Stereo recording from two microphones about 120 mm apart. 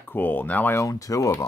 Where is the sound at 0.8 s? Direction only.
30° left (ahead or behind).